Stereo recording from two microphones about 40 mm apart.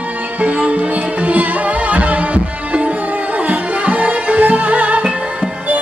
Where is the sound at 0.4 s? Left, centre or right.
Right.